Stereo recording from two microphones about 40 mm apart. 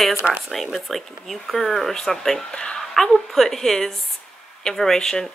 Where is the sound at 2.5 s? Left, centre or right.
Left.